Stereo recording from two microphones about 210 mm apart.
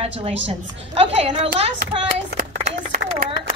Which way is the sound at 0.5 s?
30° right (ahead or behind).